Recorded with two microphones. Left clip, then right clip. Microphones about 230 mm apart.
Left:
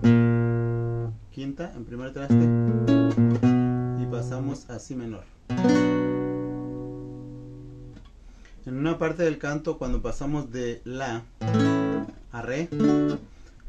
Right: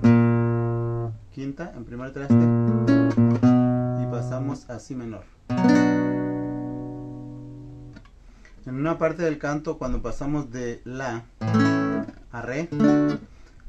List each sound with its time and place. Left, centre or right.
0.0 s music: right
1.3 s speech: centre
2.2 s music: centre
5.6 s music: centre
8.6 s a man's voice: centre
11.4 s music: centre
12.3 s speech: centre